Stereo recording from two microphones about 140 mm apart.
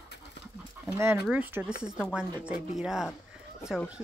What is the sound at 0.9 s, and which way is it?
A woman's voice, 15° right (ahead or behind).